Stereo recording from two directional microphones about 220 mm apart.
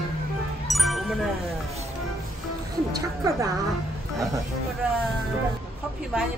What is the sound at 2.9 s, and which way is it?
Speech, 15° right (ahead or behind).